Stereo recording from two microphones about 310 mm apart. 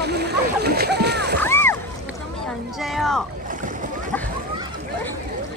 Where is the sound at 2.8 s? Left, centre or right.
Centre.